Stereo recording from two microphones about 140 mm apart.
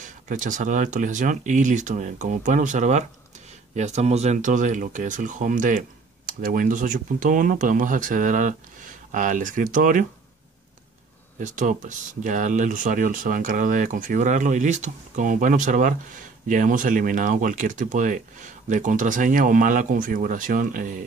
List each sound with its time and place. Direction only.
0.0 s speech: 65° right (ahead or behind)
11.3 s speech: 65° right (ahead or behind)